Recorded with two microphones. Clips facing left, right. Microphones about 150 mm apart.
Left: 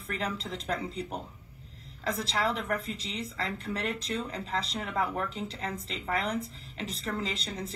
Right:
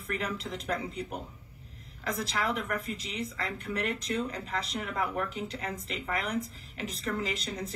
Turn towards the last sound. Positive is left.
turn(degrees=30)  # may be behind; listen again after turning